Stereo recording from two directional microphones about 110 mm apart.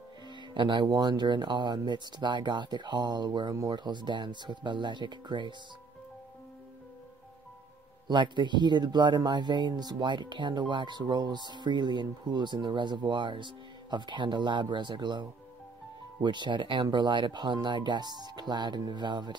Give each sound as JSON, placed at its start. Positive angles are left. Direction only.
{"t": 0.6, "sound": "speech", "side_deg": -45}
{"t": 8.1, "sound": "speech", "side_deg": -45}